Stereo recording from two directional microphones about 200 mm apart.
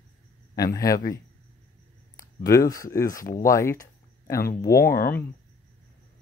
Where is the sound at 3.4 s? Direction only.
15° left (ahead or behind).